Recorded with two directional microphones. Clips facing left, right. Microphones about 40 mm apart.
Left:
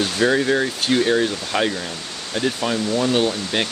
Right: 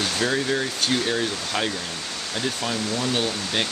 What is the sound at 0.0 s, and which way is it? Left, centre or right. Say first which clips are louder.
Speech: left 5 dB; centre.